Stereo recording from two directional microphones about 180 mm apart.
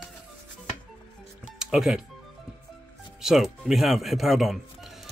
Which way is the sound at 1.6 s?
5° right (ahead or behind).